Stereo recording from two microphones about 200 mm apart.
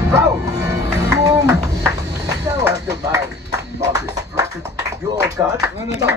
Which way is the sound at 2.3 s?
15° right (ahead or behind).